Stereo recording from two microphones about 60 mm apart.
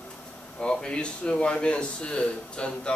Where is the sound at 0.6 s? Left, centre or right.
Centre.